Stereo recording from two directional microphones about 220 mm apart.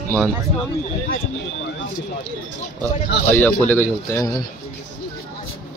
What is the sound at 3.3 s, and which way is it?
Speech, 10° left (ahead or behind).